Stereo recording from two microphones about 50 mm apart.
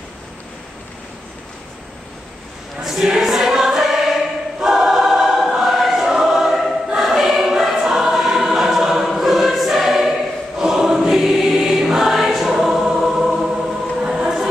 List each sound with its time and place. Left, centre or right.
2.8 s choir: centre